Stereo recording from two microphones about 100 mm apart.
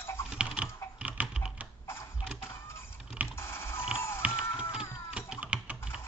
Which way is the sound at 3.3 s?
25° left (ahead or behind).